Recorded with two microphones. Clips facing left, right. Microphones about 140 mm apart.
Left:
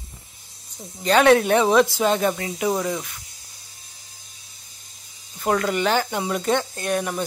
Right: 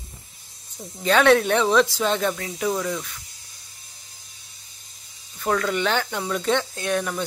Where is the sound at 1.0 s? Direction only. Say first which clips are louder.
Left 1 dB; 5° left (ahead or behind).